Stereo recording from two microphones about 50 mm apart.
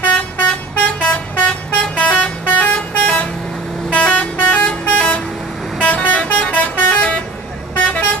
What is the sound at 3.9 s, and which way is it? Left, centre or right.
Vehicle, left.